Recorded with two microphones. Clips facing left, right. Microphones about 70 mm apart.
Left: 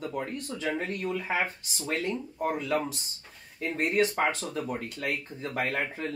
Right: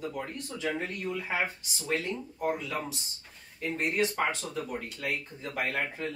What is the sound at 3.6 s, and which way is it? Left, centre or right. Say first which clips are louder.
Speech: left 2 dB; left.